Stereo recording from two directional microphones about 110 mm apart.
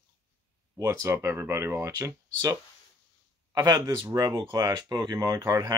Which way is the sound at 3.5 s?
35° right (ahead or behind).